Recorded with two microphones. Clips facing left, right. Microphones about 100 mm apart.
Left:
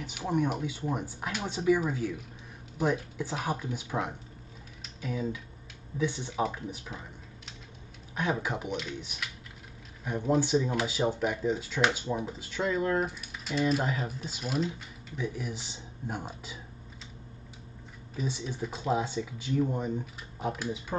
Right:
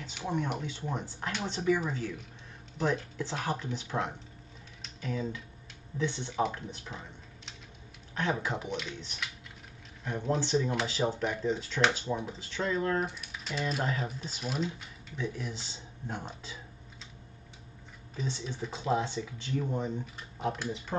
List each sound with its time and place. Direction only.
0.0 s speech: 10° left (ahead or behind)
8.1 s speech: 10° left (ahead or behind)
18.1 s speech: 10° left (ahead or behind)